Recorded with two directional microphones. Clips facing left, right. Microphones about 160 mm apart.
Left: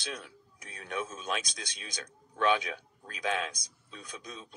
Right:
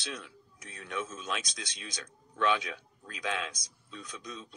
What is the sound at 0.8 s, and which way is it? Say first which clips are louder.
Speech: left 1 dB; 50° left (ahead or behind).